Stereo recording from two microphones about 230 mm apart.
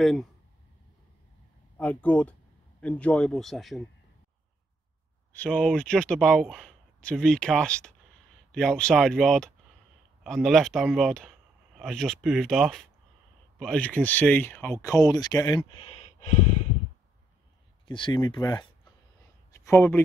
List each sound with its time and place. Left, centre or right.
0.0 s speech: centre
1.8 s speech: centre
5.3 s speech: centre; by 16.4 s left
17.8 s speech: left